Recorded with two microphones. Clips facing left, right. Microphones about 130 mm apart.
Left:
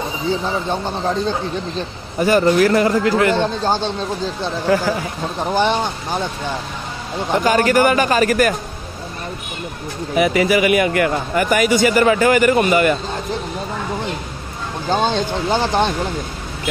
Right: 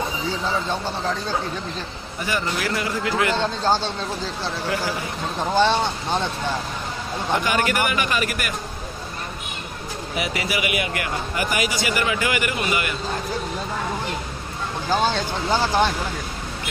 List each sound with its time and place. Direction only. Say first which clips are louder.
0.7 s speech: left 4 dB; 20° left (ahead or behind)
2.2 s speech: left 12 dB; 45° left (ahead or behind)
3.3 s speech: left 3 dB; 15° left (ahead or behind)
5.4 s speech: left 1 dB; 15° left (ahead or behind)
7.4 s a man's voice: left 12 dB; 40° left (ahead or behind)
10.1 s speech: left 11 dB; 50° left (ahead or behind)
14.9 s speech: left 4 dB; 20° left (ahead or behind)